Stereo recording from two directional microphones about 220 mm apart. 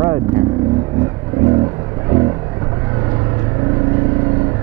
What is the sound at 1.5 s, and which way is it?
Vehicle, 20° right (ahead or behind).